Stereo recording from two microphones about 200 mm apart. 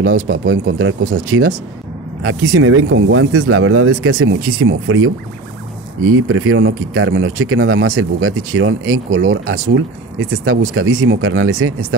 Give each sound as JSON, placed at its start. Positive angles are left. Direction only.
{"t": 0.5, "sound": "speech", "side_deg": -85}